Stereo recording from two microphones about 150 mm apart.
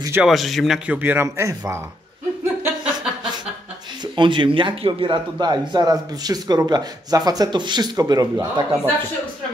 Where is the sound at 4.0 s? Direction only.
30° right (ahead or behind).